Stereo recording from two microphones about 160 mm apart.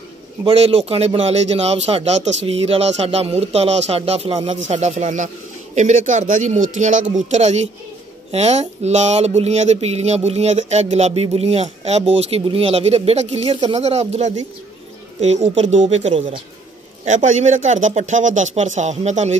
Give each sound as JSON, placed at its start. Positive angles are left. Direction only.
{"t": 0.5, "sound": "speech", "side_deg": -40}
{"t": 17.0, "sound": "speech", "side_deg": -50}